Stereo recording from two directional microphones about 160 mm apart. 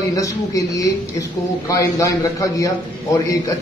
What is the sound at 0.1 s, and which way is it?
A man's voice, 20° left (ahead or behind).